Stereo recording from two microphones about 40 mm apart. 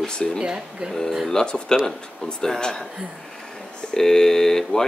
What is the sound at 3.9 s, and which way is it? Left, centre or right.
Speech, centre.